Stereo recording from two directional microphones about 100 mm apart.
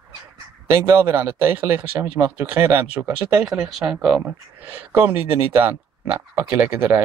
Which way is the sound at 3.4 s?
5° right (ahead or behind).